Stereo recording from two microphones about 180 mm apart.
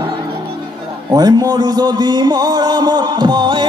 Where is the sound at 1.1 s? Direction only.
20° right (ahead or behind).